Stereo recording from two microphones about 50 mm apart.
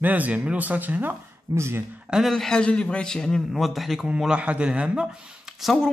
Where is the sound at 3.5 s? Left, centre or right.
Centre.